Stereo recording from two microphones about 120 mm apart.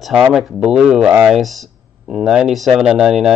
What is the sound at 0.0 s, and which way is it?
Speech, centre (ahead or behind).